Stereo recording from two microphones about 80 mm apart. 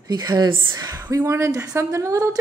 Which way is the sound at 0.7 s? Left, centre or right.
Right.